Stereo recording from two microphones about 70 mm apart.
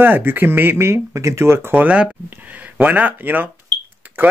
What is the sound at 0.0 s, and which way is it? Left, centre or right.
Speech, right.